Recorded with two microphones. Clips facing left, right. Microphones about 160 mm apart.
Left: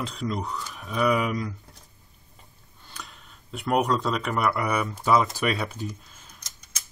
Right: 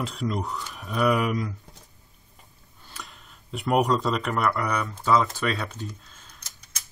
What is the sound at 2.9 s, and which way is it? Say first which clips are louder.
Speech: even; centre (ahead or behind).